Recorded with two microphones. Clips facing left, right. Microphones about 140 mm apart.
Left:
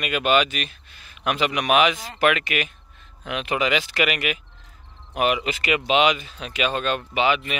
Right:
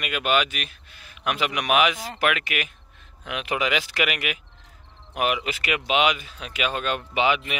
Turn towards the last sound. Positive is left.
turn(degrees=-15)  # may be behind; listen again after turning